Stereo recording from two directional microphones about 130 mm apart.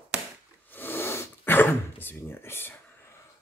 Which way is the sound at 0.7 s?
15° left (ahead or behind).